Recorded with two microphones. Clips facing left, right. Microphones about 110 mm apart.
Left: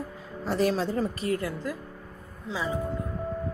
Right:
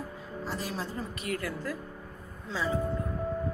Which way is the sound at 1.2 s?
25° left (ahead or behind).